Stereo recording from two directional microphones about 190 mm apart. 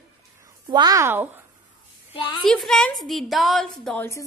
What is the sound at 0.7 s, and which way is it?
Speech, 20° right (ahead or behind).